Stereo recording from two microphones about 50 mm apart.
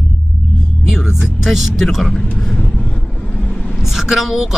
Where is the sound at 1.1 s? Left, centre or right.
Centre.